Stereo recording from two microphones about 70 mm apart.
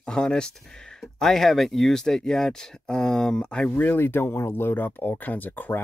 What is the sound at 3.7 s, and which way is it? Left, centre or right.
Speech, left.